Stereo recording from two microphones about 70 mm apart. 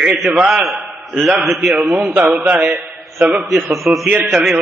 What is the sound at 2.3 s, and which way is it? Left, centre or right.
Speech, centre.